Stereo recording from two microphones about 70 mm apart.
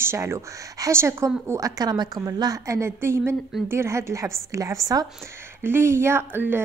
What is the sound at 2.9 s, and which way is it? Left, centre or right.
A woman's voice, right.